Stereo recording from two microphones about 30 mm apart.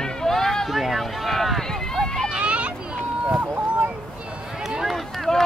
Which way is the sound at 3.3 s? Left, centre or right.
Right.